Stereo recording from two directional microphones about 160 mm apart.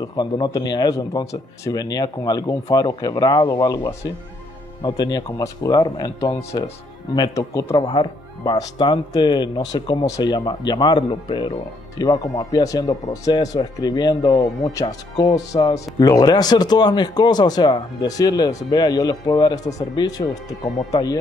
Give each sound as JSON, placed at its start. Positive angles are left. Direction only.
{"t": 0.0, "sound": "speech", "side_deg": 30}